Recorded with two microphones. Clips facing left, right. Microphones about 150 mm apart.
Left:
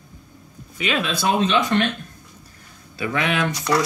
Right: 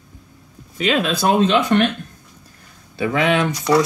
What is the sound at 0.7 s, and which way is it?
Speech, 40° right (ahead or behind).